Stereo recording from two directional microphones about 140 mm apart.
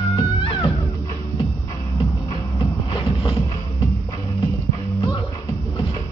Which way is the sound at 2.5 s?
40° left (ahead or behind).